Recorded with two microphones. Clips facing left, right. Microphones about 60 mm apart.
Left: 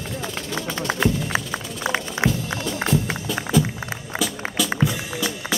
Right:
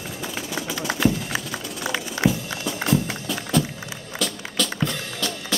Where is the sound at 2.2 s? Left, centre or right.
Left.